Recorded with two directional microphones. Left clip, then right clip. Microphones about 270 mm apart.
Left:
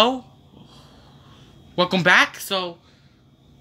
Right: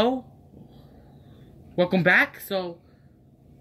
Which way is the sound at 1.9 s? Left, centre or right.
Left.